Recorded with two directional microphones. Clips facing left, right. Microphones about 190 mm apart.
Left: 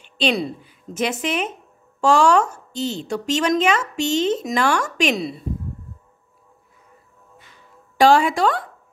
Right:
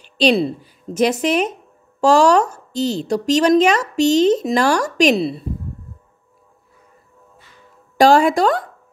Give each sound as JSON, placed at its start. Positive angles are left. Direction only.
{"t": 0.0, "sound": "speech", "side_deg": -35}
{"t": 8.0, "sound": "speech", "side_deg": -40}